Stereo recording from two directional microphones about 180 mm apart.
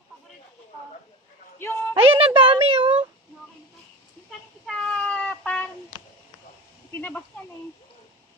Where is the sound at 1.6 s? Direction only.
15° left (ahead or behind).